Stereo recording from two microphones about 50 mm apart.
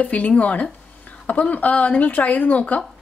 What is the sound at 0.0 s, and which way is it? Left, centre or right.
A woman's voice, left.